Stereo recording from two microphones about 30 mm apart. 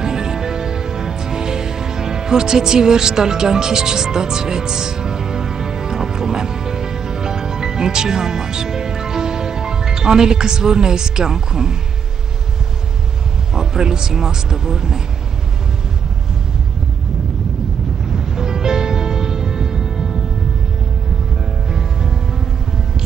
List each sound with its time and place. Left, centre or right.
0.0 s music: centre
13.6 s a man's voice: right
18.1 s music: right
21.6 s music: centre